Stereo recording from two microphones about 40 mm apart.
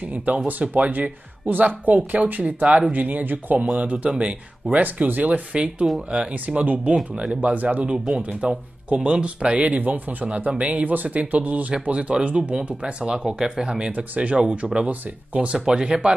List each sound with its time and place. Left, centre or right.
0.1 s speech: right
2.4 s speech: right
3.8 s speech: right
4.6 s speech: right
5.5 s speech: right
6.6 s speech: right
9.8 s speech: right
10.2 s speech: right
13.0 s speech: centre
13.9 s speech: right
15.6 s speech: centre